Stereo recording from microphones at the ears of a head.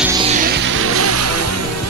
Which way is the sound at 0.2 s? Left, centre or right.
Right.